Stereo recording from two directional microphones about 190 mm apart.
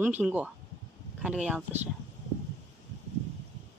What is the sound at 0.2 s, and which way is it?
Speech, 5° right (ahead or behind).